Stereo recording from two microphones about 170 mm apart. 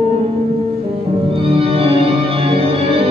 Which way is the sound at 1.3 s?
35° right (ahead or behind).